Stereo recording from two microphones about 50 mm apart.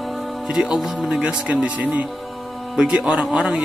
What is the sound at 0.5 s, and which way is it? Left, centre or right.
Speech, centre.